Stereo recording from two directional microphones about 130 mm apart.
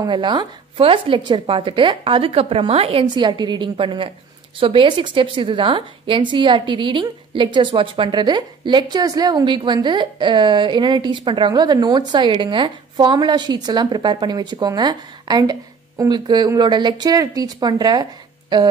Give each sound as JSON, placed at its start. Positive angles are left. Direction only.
{"t": 0.0, "sound": "a woman's voice", "side_deg": -35}